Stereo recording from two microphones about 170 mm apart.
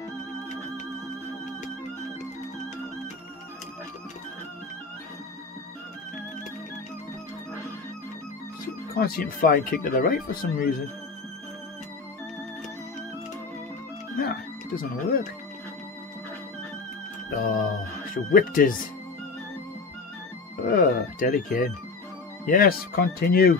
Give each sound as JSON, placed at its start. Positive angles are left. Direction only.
{"t": 8.9, "sound": "speech", "side_deg": 60}
{"t": 14.1, "sound": "music", "side_deg": 55}
{"t": 17.4, "sound": "speech", "side_deg": 55}
{"t": 20.6, "sound": "speech", "side_deg": 55}